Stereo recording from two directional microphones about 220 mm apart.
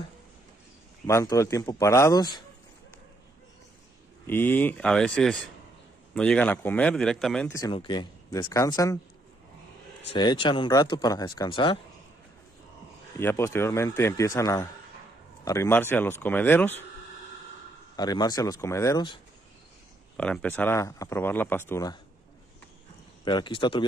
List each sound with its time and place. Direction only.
1.0 s speech: 15° left (ahead or behind)
4.3 s speech: 10° left (ahead or behind)
7.5 s speech: 20° left (ahead or behind)
10.1 s speech: 20° left (ahead or behind)
13.2 s speech: 10° left (ahead or behind)
17.9 s speech: 20° left (ahead or behind)
20.2 s speech: 5° left (ahead or behind)
23.2 s speech: 20° left (ahead or behind)